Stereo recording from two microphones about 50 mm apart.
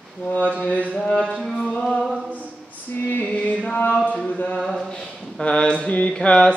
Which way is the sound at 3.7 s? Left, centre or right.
Left.